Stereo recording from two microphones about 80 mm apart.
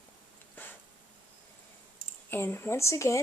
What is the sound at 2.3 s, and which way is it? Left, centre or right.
Speech, left.